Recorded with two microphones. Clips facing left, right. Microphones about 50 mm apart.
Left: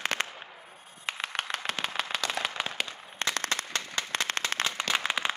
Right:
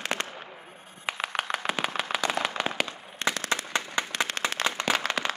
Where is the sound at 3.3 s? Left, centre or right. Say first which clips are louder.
Right 2 dB; left.